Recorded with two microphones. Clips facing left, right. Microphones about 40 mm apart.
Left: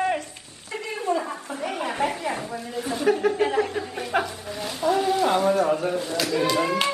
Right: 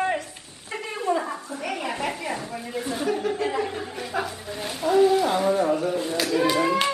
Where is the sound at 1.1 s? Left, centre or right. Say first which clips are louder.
Even; right.